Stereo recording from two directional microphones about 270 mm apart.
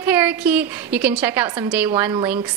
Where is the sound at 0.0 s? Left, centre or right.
Centre.